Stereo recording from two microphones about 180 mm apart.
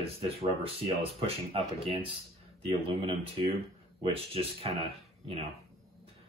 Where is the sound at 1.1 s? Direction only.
30° right (ahead or behind).